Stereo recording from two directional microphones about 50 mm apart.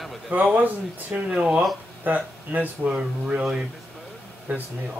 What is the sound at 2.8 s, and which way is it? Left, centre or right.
Speech, centre.